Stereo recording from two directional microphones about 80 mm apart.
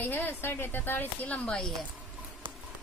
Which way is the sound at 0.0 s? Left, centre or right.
Left.